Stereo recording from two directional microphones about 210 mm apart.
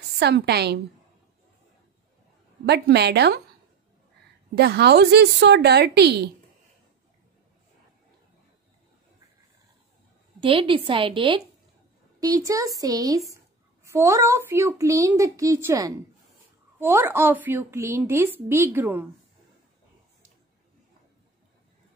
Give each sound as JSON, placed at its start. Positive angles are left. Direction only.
{"t": 0.2, "sound": "speech", "side_deg": -50}
{"t": 2.6, "sound": "speech", "side_deg": -55}
{"t": 4.6, "sound": "speech", "side_deg": -50}
{"t": 10.4, "sound": "a woman's voice", "side_deg": -25}